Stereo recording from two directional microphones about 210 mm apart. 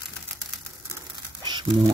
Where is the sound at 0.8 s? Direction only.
20° right (ahead or behind).